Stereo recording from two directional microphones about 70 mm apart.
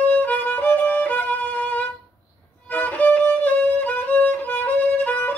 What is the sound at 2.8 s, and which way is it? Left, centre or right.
Violin, left.